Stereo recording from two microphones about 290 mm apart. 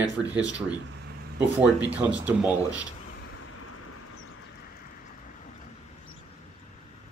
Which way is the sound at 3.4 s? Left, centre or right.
Left.